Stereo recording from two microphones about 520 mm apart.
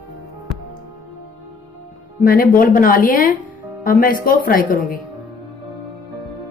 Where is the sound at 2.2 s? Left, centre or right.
Centre.